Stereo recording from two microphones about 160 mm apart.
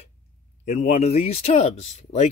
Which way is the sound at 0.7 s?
45° left (ahead or behind).